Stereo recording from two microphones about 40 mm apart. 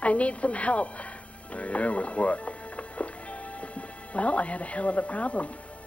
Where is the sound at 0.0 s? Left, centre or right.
Left.